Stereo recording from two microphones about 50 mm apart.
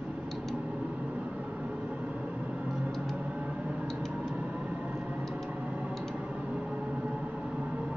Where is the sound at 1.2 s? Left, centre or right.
Right.